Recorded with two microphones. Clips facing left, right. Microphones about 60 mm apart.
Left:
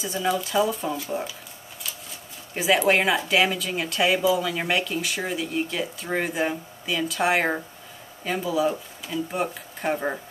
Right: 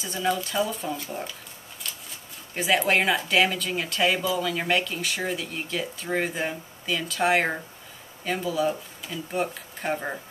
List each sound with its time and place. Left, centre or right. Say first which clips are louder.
0.0 s speech: left 1 dB; centre